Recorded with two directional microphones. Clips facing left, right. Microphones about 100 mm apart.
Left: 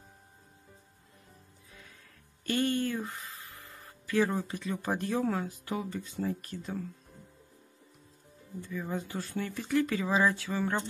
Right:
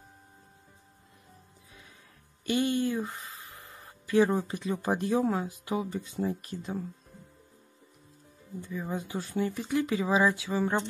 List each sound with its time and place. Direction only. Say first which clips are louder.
2.4 s speech: right 2 dB; 15° right (ahead or behind)
8.5 s speech: right 1 dB; 15° right (ahead or behind)